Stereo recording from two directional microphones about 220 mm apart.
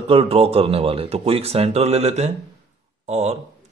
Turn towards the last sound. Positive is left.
turn(degrees=-30)  # may be behind; listen again after turning